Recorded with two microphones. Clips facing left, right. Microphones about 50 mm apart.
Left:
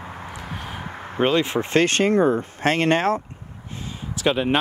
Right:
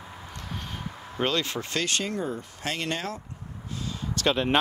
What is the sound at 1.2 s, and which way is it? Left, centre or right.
Speech, left.